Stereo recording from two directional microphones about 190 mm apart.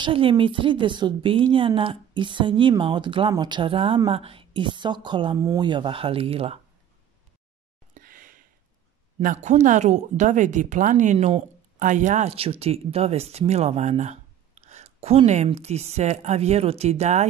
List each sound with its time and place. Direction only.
0.0 s speech: 25° right (ahead or behind)
7.9 s a sound: 45° right (ahead or behind)
9.2 s speech: 40° right (ahead or behind)